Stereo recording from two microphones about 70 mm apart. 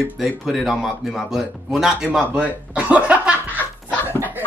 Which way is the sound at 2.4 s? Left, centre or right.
Right.